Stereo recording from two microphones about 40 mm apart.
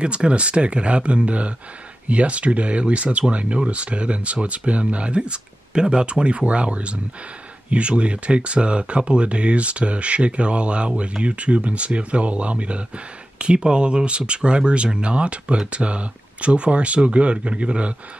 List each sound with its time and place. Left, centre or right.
0.0 s speech: right